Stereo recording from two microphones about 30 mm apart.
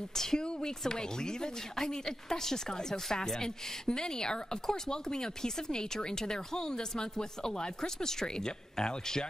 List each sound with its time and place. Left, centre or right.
0.1 s speech: centre
0.4 s speech: left